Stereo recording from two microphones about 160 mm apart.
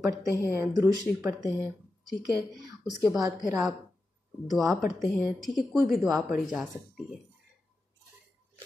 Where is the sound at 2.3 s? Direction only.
20° right (ahead or behind).